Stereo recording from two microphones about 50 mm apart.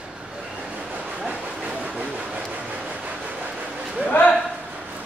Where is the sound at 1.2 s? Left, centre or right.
Right.